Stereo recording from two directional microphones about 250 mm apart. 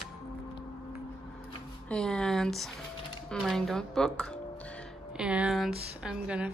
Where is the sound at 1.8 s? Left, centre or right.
Centre.